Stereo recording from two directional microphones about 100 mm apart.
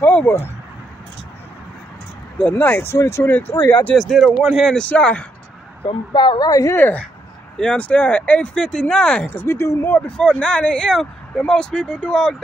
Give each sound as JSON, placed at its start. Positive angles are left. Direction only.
{"t": 0.0, "sound": "speech", "side_deg": 20}
{"t": 2.3, "sound": "speech", "side_deg": 15}
{"t": 4.1, "sound": "speech", "side_deg": 0}
{"t": 4.8, "sound": "speech", "side_deg": 15}
{"t": 5.9, "sound": "speech", "side_deg": 50}
{"t": 6.7, "sound": "speech", "side_deg": 20}
{"t": 9.9, "sound": "speech", "side_deg": 10}